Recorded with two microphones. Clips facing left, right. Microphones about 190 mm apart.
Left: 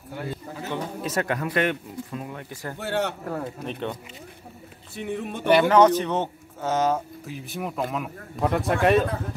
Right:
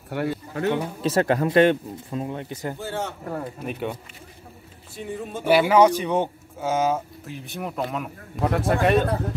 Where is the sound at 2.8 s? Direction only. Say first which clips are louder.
Left 8 dB; 70° left (ahead or behind).